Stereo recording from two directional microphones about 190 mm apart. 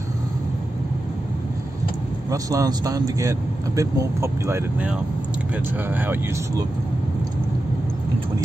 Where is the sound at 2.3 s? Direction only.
15° right (ahead or behind).